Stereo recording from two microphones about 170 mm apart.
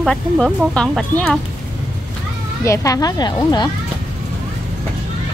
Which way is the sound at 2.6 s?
20° left (ahead or behind).